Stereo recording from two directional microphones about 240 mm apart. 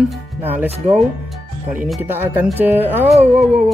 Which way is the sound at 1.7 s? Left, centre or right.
Centre.